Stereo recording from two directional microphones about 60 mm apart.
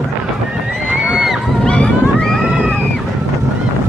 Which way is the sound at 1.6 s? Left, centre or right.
Centre.